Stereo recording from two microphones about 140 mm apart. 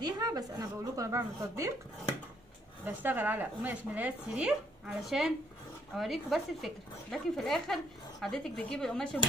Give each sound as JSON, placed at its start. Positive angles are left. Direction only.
{"t": 0.0, "sound": "a woman's voice", "side_deg": -25}
{"t": 2.8, "sound": "speech", "side_deg": -15}